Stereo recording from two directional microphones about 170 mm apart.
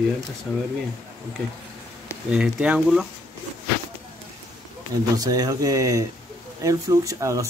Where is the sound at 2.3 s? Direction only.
5° right (ahead or behind).